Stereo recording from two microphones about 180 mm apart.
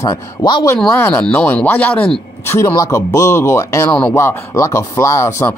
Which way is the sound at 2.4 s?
15° left (ahead or behind).